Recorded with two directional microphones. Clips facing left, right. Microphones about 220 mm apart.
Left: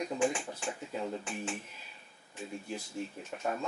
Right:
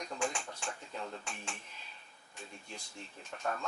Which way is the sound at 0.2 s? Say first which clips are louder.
Left 5 dB; 5° left (ahead or behind).